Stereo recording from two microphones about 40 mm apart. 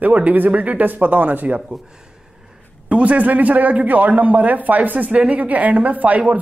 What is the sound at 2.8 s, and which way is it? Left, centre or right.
Speech, right.